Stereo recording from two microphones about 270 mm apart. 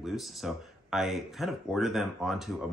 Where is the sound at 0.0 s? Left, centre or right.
Centre.